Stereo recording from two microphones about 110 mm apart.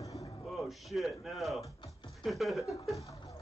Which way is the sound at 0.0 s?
30° left (ahead or behind).